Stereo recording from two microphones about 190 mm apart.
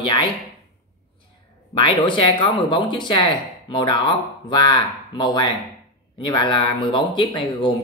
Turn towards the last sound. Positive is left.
turn(degrees=25)  # may be behind; listen again after turning